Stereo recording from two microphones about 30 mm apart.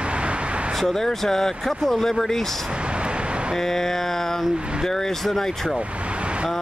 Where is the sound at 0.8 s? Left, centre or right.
Centre.